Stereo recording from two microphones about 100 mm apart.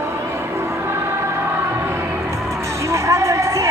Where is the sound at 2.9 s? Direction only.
30° right (ahead or behind).